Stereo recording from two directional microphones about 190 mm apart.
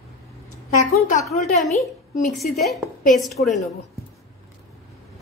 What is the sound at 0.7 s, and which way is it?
A woman's voice, 40° left (ahead or behind).